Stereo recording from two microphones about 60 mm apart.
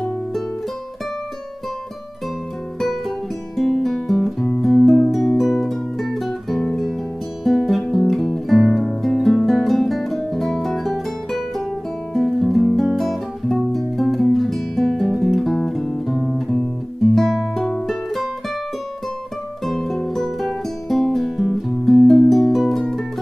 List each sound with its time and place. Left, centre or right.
3.5 s music: centre
12.3 s guitar: centre
19.6 s music: centre